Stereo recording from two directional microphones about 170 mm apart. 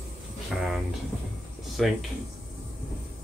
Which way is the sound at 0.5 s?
Centre (ahead or behind).